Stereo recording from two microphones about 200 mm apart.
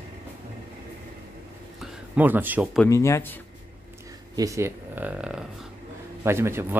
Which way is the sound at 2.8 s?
15° left (ahead or behind).